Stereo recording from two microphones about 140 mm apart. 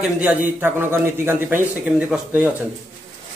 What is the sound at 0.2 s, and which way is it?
A man's voice, 10° right (ahead or behind).